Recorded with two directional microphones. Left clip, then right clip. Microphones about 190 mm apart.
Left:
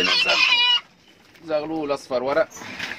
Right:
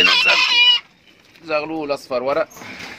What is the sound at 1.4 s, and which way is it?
Speech, 5° left (ahead or behind).